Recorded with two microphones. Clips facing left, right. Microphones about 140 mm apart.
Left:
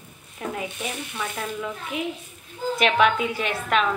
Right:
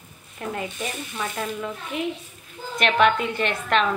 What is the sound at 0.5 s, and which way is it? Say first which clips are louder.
A woman's voice: right 2 dB; centre (ahead or behind).